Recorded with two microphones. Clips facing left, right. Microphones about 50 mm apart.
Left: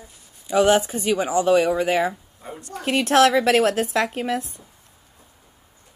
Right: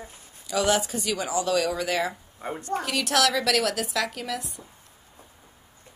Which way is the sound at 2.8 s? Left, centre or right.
Left.